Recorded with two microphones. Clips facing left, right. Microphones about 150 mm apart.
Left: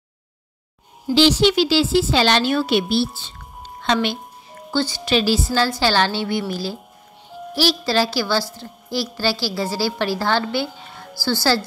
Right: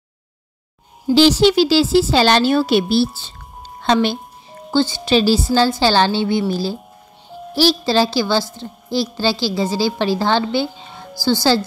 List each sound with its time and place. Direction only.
1.1 s a woman's voice: 40° right (ahead or behind); by 11.6 s 20° right (ahead or behind)